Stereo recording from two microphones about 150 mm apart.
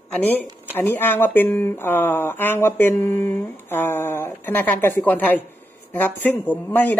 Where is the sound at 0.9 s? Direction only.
15° left (ahead or behind).